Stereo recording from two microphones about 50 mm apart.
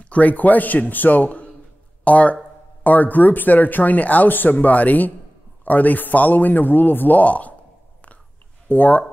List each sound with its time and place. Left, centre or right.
0.0 s speech: left
8.6 s speech: left